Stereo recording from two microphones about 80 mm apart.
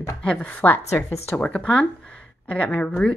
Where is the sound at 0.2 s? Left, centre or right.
Centre.